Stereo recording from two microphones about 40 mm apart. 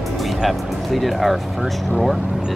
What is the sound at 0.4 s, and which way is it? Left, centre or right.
Speech, centre.